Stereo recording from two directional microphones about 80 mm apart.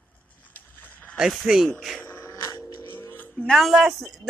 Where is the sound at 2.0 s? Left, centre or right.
Left.